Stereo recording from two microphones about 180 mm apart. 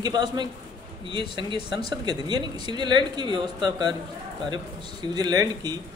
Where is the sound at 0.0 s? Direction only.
25° right (ahead or behind).